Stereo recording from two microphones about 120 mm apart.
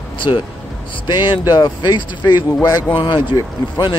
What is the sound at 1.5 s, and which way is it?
Speech, 35° left (ahead or behind).